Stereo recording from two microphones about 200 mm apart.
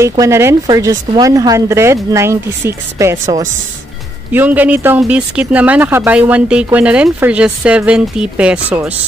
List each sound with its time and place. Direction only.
0.2 s speech: 15° right (ahead or behind)